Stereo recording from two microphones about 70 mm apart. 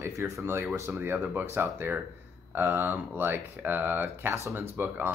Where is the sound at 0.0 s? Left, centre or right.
Right.